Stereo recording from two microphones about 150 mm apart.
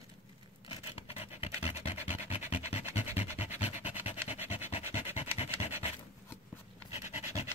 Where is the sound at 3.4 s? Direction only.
45° left (ahead or behind).